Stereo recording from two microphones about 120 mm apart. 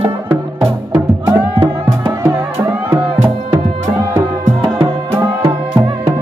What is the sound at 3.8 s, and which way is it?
Music, 25° right (ahead or behind).